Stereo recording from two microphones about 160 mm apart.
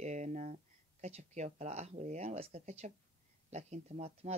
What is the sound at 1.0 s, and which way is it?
Speech, 45° right (ahead or behind).